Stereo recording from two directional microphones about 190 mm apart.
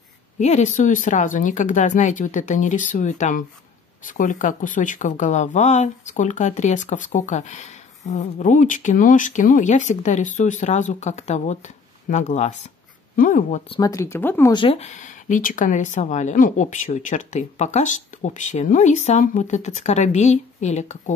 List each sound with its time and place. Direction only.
0.4 s a woman's voice: 40° left (ahead or behind)
13.7 s speech: 20° left (ahead or behind)
14.5 s speech: 25° left (ahead or behind)